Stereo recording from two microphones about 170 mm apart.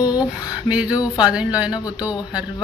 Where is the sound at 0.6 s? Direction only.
5° right (ahead or behind).